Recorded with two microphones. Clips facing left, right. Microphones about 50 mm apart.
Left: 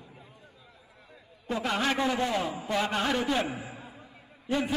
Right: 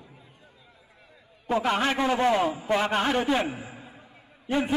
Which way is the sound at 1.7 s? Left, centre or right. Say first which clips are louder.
Right 2 dB; right.